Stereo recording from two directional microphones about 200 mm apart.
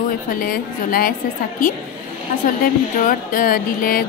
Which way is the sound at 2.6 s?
45° left (ahead or behind).